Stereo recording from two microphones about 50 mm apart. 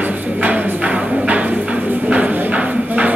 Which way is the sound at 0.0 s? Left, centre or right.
Right.